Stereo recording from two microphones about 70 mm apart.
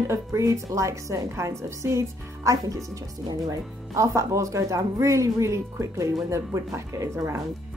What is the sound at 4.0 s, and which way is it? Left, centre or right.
Speech, right.